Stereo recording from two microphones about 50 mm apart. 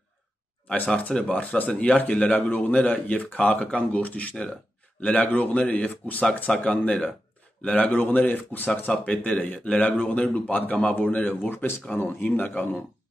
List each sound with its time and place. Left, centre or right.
0.7 s speech: left
6.5 s speech: centre
6.8 s speech: left
11.8 s speech: left